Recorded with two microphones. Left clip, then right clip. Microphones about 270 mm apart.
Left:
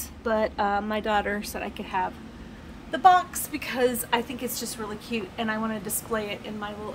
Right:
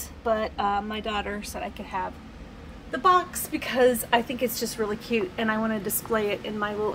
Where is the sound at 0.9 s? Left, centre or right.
Centre.